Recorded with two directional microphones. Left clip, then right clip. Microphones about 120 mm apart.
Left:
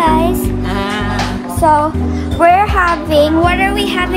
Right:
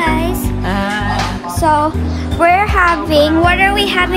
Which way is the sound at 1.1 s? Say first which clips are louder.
Left 1 dB; centre (ahead or behind).